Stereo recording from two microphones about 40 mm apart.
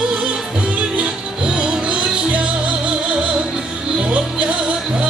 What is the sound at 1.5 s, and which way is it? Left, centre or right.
Music, right.